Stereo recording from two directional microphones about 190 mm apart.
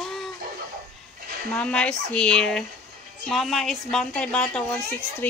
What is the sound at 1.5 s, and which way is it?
A woman's voice, 5° left (ahead or behind).